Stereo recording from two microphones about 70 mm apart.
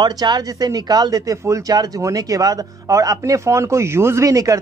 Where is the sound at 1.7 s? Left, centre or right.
Right.